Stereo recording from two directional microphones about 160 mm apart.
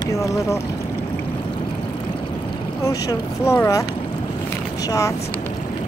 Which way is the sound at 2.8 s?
20° left (ahead or behind).